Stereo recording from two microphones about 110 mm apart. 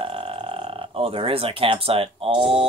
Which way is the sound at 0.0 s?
60° right (ahead or behind).